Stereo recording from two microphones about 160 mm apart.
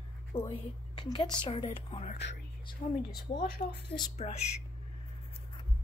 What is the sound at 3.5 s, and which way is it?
Speech, 90° left.